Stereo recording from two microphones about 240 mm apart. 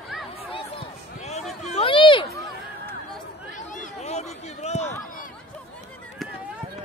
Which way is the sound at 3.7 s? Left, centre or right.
Left.